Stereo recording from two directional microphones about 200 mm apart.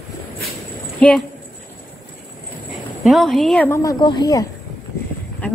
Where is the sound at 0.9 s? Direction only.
5° left (ahead or behind).